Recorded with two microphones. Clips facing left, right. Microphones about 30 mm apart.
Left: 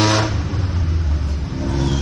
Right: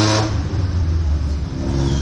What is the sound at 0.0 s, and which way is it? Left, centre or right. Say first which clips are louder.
Vehicle: left 1 dB; left.